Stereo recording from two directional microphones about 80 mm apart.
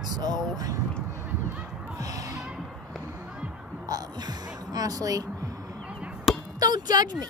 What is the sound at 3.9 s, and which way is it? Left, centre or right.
Music, right.